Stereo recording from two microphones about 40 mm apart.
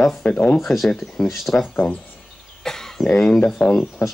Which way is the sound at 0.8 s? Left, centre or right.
Centre.